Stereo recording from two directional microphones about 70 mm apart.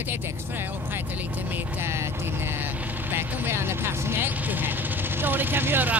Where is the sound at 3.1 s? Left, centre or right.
Right.